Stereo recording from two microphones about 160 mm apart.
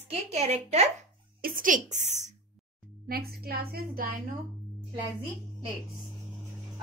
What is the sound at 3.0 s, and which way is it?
A woman's voice, 70° right (ahead or behind).